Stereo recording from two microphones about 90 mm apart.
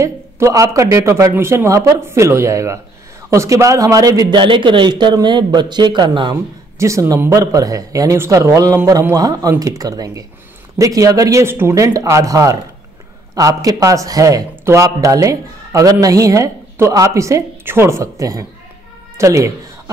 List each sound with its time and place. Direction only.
0.0 s speech: 35° right (ahead or behind)
4.4 s a man's voice: 65° right (ahead or behind)
6.8 s speech: 35° right (ahead or behind)
14.5 s speech: 30° right (ahead or behind)